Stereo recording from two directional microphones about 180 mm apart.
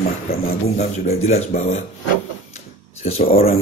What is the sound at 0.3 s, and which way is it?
Speech, 60° left (ahead or behind).